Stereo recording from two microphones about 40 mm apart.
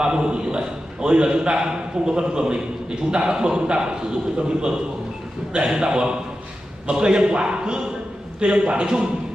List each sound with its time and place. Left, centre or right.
0.0 s a man's voice: right